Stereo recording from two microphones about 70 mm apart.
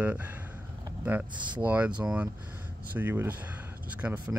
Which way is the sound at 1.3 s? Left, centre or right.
Right.